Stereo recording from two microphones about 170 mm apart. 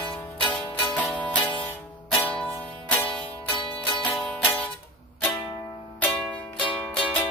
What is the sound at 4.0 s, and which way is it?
Music, 5° left (ahead or behind).